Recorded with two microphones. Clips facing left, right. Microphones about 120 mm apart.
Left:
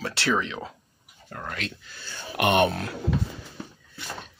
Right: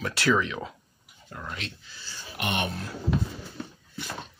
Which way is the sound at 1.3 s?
55° left (ahead or behind).